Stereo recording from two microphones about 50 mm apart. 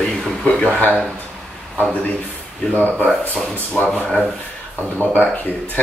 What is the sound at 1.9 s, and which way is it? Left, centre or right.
Speech, left.